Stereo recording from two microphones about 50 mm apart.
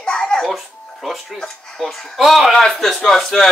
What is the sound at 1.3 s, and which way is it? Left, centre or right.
Speech, centre.